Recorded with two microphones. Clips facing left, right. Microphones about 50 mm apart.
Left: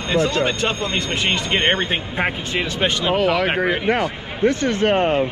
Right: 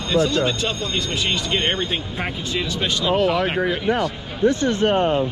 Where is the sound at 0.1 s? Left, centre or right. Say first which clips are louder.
Even; left.